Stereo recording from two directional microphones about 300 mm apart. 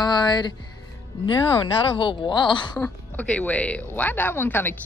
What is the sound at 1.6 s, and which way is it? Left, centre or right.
A woman's voice, centre.